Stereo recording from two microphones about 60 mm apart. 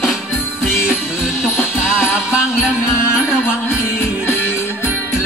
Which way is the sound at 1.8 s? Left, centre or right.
Centre.